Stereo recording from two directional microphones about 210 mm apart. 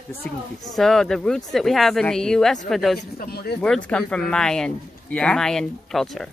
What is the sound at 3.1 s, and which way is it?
Speech, 45° left (ahead or behind).